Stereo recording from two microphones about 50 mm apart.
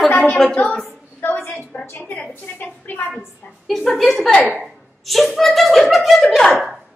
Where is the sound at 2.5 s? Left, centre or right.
Left.